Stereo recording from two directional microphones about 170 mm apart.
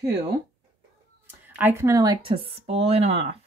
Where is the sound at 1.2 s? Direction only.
10° right (ahead or behind).